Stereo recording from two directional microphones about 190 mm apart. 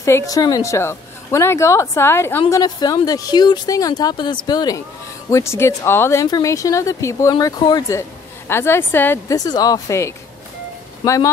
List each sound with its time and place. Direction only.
0.0 s speech: 15° left (ahead or behind)